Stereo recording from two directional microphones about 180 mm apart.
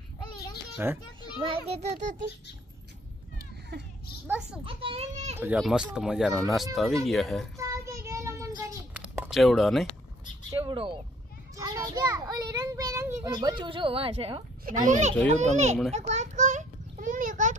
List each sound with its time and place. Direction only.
0.8 s a child's voice: 10° right (ahead or behind)
1.4 s a child's voice: 30° right (ahead or behind)
3.7 s a child's voice: 70° right (ahead or behind)
4.6 s a child's voice: 30° right (ahead or behind)
5.4 s speech: 5° right (ahead or behind)
7.5 s child singing: 15° right (ahead or behind)
8.9 s a sound: 5° right (ahead or behind)
10.6 s a child's voice: 25° right (ahead or behind)
14.6 s a child's voice: 50° right (ahead or behind)
15.9 s a sound: 40° right (ahead or behind)